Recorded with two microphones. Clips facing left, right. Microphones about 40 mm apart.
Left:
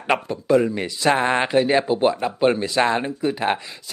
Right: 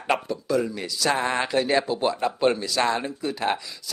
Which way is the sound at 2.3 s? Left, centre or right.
Centre.